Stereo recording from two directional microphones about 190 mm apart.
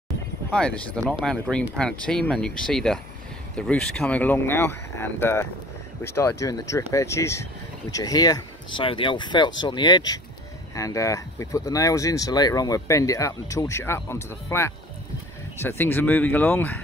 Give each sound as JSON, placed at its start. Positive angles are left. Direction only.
{"t": 0.5, "sound": "speech", "side_deg": 5}